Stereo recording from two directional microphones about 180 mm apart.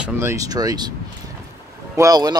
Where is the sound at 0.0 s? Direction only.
15° right (ahead or behind).